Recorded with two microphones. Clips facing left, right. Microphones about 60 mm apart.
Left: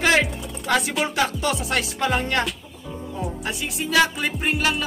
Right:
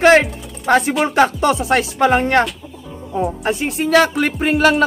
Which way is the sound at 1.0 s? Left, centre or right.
Right.